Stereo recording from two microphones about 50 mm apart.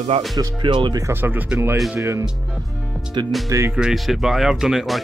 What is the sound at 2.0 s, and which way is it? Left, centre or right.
Speech, right.